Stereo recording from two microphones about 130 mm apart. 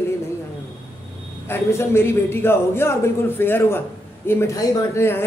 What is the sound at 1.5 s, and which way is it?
A man's voice, 20° left (ahead or behind).